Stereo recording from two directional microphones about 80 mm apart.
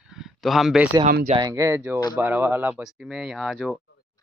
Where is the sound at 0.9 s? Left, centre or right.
Right.